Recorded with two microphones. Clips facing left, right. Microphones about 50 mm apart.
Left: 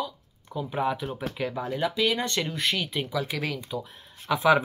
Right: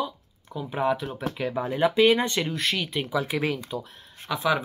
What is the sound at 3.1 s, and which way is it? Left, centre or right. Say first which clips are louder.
Speech: right 4 dB; right.